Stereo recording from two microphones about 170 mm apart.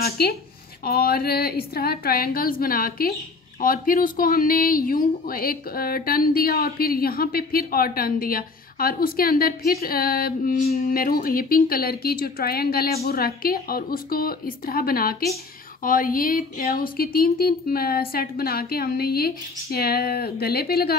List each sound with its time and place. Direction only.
0.0 s speech: 65° left (ahead or behind)